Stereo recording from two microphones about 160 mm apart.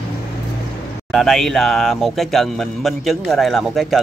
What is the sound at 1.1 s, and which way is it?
Speech, centre (ahead or behind).